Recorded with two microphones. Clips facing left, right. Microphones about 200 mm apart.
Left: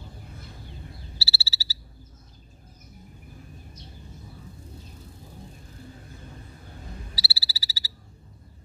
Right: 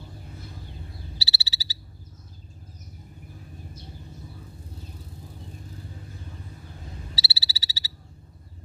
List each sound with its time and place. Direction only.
1.1 s frog: 20° right (ahead or behind)
7.2 s frog: 20° right (ahead or behind)